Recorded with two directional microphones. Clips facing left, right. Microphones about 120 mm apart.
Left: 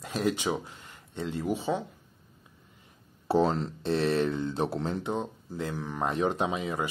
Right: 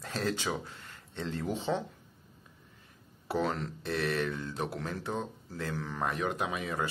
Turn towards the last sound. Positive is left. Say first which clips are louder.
# left 4 dB
turn(degrees=15)  # may be behind; listen again after turning